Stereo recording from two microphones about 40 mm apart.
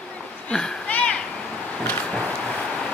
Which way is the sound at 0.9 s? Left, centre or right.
Left.